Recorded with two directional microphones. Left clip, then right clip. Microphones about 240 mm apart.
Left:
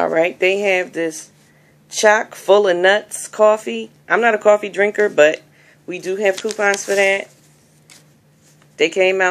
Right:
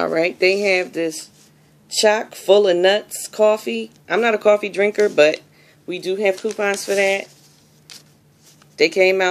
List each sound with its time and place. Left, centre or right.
0.0 s speech: centre
8.7 s speech: centre